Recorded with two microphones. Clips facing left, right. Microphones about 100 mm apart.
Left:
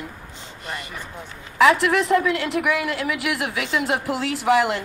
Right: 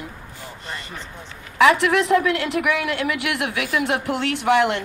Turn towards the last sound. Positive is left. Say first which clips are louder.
# right 1 dB
turn(degrees=0)  # may be behind; listen again after turning